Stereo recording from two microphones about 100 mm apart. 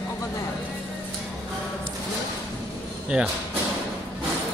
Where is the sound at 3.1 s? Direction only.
15° right (ahead or behind).